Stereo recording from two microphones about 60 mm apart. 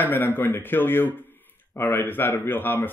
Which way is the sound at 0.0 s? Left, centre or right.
Left.